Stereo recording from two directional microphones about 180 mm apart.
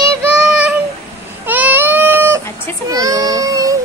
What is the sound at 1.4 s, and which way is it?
Baby cry, 10° right (ahead or behind).